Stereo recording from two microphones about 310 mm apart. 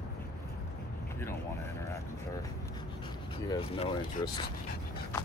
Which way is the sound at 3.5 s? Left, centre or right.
Centre.